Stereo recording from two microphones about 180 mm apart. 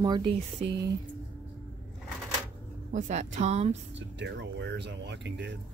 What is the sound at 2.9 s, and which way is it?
Speech, 45° right (ahead or behind).